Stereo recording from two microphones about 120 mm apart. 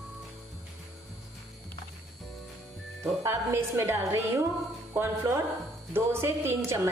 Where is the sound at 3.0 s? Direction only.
20° right (ahead or behind).